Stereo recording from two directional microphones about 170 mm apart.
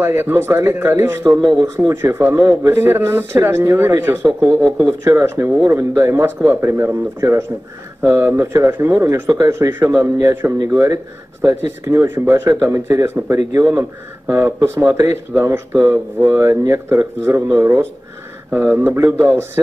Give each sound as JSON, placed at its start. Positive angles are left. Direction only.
{"t": 0.0, "sound": "speech", "side_deg": -15}
{"t": 4.8, "sound": "speech", "side_deg": -15}